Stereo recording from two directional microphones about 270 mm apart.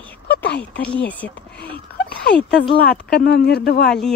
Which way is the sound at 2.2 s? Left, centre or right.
Left.